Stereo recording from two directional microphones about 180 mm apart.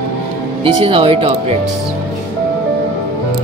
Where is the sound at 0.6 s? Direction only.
30° right (ahead or behind).